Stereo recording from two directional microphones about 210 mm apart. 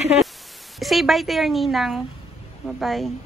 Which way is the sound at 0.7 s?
Centre (ahead or behind).